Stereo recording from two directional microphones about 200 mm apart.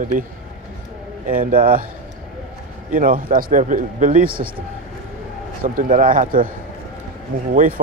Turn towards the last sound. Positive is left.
turn(degrees=-45)  # may be behind; listen again after turning